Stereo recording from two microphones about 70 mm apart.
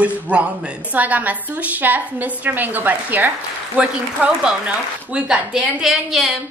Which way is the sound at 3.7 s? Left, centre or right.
Centre.